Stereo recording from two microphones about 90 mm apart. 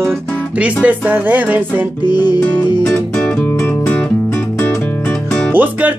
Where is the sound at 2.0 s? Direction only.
50° left (ahead or behind).